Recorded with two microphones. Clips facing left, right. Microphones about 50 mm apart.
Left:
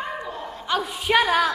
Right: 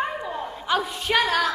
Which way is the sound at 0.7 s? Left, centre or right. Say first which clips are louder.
Left 1 dB; centre.